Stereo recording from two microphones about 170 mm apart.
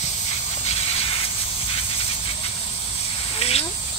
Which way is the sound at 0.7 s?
35° left (ahead or behind).